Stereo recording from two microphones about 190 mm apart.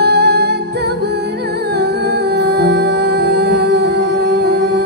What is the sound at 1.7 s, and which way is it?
Music, 60° right (ahead or behind).